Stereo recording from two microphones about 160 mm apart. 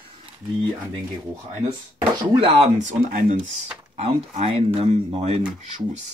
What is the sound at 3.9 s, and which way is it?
Speech, 40° right (ahead or behind).